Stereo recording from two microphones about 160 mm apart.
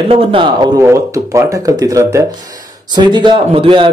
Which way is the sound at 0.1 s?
30° right (ahead or behind).